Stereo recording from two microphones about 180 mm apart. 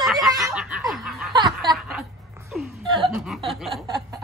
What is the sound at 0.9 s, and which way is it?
Snicker, centre (ahead or behind).